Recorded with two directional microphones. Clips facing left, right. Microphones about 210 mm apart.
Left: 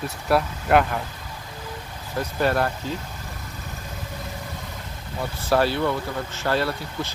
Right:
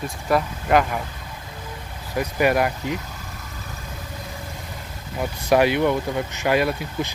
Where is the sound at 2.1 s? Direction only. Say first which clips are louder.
Right 3 dB; 10° right (ahead or behind).